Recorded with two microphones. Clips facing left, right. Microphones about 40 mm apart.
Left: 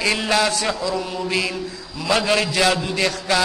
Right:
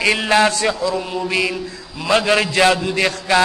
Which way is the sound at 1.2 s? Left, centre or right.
Centre.